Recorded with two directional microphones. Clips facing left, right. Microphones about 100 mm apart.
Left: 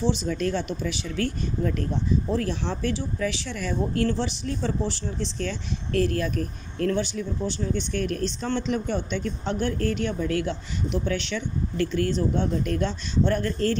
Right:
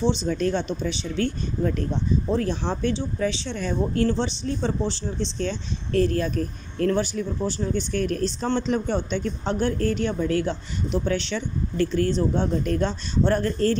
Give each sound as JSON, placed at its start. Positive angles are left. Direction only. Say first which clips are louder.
{"t": 0.1, "sound": "a man's voice", "louder": "right 2 dB", "side_deg": -30}